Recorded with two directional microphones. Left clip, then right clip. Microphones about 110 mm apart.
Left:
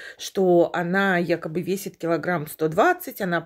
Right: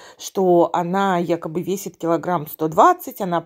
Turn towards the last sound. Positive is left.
turn(degrees=-15)  # may be behind; listen again after turning